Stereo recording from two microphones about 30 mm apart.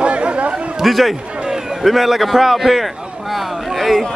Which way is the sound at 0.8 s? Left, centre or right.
Centre.